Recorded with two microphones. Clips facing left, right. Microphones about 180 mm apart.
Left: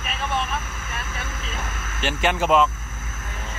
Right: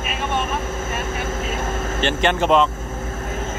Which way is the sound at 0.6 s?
40° right (ahead or behind).